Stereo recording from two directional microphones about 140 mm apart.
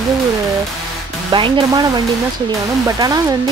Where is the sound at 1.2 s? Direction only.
35° right (ahead or behind).